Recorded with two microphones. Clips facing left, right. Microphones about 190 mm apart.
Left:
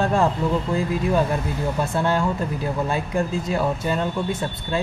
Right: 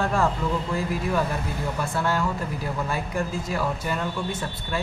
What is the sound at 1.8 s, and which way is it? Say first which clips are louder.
Speech: left 4 dB; 25° left (ahead or behind).